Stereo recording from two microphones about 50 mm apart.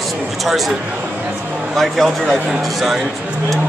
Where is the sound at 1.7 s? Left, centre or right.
Centre.